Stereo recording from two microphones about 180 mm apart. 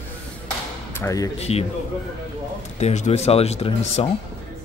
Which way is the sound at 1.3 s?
35° left (ahead or behind).